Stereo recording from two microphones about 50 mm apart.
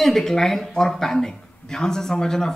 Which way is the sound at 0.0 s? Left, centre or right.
Centre.